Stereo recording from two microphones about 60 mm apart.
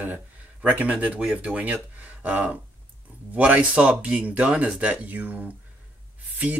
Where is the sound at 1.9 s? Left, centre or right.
Right.